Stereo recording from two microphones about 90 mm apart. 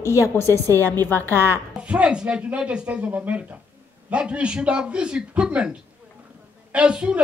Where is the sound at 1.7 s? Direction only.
15° right (ahead or behind).